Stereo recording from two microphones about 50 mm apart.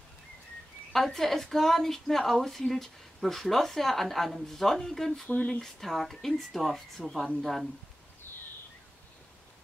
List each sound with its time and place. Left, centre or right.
0.9 s a woman's voice: centre
5.3 s speech: left
5.6 s a woman's voice: centre